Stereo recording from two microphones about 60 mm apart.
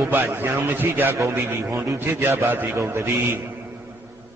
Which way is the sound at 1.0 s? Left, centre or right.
Right.